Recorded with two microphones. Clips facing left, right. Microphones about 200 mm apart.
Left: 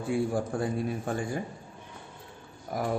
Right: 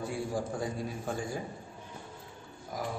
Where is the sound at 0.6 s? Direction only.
60° left (ahead or behind).